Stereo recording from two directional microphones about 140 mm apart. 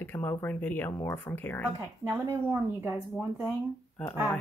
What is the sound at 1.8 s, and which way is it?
Speech, 20° right (ahead or behind).